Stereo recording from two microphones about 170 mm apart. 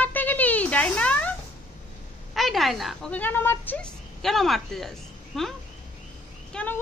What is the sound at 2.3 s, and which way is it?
Speech, centre (ahead or behind).